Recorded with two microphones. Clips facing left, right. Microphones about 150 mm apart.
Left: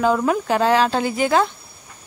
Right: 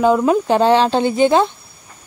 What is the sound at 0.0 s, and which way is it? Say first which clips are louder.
Speech: right 5 dB; 20° right (ahead or behind).